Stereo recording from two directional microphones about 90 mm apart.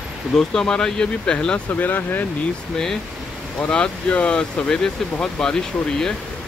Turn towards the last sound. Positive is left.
turn(degrees=5)  # may be behind; listen again after turning